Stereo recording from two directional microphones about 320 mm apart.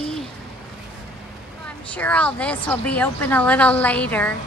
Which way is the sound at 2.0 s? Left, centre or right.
Centre.